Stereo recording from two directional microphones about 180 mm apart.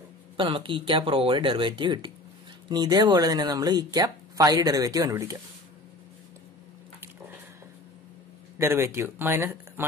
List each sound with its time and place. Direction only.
0.4 s speech: 30° right (ahead or behind)
8.5 s speech: 15° right (ahead or behind)